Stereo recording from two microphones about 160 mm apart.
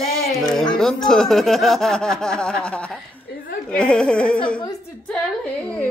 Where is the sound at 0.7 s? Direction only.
5° left (ahead or behind).